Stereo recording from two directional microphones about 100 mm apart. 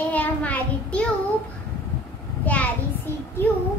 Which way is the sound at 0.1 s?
15° left (ahead or behind).